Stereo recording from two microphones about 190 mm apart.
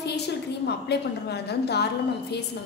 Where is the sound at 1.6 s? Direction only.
60° left (ahead or behind).